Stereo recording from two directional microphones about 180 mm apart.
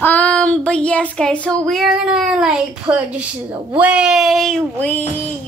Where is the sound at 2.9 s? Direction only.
25° right (ahead or behind).